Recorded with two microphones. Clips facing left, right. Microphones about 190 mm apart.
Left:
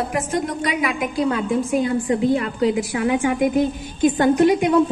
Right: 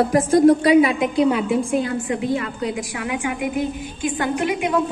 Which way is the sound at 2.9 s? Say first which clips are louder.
Left 6 dB; 35° left (ahead or behind).